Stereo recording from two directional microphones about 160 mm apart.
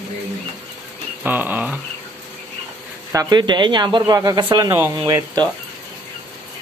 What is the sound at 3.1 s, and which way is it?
Speech, 25° right (ahead or behind).